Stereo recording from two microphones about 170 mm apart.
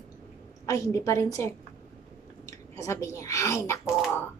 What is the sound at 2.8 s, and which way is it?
A woman's voice, 20° left (ahead or behind).